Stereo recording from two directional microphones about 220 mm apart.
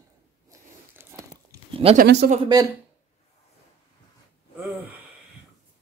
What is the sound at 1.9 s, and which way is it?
Speech, 45° right (ahead or behind).